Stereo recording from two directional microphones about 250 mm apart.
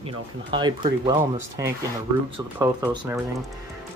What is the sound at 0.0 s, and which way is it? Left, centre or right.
Speech, centre.